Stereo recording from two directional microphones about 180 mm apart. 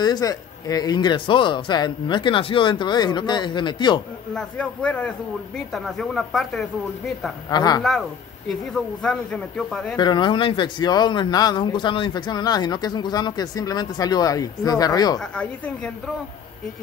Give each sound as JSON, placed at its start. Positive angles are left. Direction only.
{"t": 0.0, "sound": "speech", "side_deg": 20}
{"t": 4.3, "sound": "speech", "side_deg": 5}
{"t": 7.4, "sound": "speech", "side_deg": 20}
{"t": 8.5, "sound": "speech", "side_deg": 0}
{"t": 9.9, "sound": "speech", "side_deg": 25}
{"t": 15.1, "sound": "speech", "side_deg": 5}